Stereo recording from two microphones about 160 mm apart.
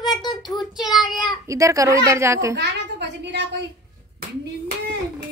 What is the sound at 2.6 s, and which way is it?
Speech, 90° right.